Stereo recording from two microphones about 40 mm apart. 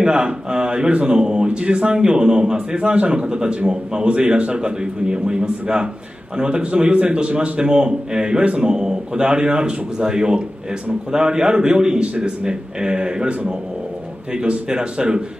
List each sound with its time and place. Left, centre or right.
0.0 s a man's voice: right